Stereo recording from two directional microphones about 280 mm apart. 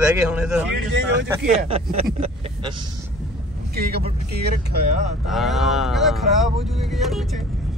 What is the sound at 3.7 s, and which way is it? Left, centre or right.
Speech, right.